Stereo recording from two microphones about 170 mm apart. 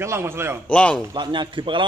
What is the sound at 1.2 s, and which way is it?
Speech, 30° right (ahead or behind).